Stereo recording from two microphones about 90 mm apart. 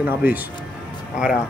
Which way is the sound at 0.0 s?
20° right (ahead or behind).